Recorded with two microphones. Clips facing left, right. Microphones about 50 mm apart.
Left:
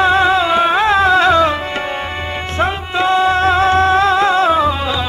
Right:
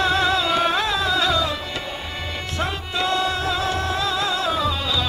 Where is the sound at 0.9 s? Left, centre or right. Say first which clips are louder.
Left 10 dB; left.